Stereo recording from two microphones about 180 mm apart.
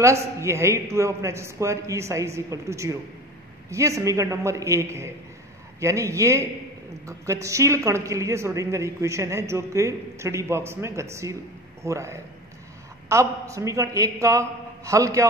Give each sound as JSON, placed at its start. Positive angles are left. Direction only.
{"t": 0.0, "sound": "speech", "side_deg": -15}